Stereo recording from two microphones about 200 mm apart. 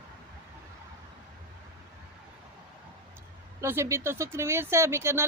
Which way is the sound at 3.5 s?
15° right (ahead or behind).